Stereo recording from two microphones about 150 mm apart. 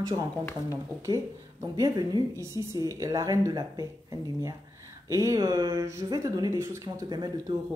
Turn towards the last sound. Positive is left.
turn(degrees=-25)  # may be behind; listen again after turning